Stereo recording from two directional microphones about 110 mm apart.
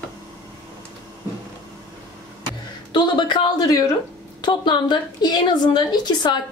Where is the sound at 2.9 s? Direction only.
45° left (ahead or behind).